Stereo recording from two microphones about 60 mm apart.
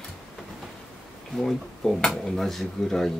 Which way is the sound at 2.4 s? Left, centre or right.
Centre.